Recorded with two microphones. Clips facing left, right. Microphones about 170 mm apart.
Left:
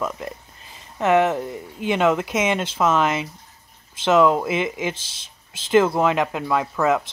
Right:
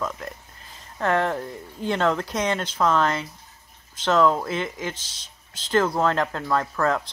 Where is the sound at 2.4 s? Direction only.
20° left (ahead or behind).